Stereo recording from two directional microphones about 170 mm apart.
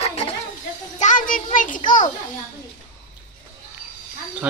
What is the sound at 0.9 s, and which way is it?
A child's voice, 50° left (ahead or behind).